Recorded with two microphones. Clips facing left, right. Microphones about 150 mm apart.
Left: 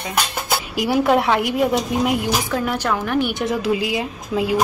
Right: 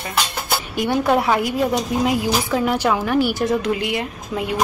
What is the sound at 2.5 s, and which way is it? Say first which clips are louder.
A woman's voice: right 3 dB; 10° right (ahead or behind).